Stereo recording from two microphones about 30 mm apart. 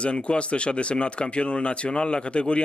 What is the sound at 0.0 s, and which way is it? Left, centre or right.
Speech, left.